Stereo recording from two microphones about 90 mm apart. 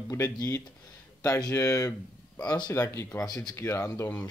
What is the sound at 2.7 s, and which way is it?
Speech, 35° left (ahead or behind).